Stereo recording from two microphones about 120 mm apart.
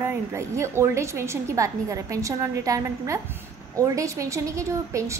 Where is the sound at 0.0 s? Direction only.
20° right (ahead or behind).